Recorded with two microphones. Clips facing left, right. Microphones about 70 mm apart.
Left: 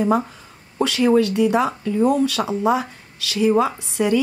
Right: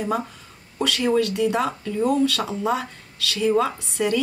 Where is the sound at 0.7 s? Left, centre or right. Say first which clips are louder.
Left 4 dB; left.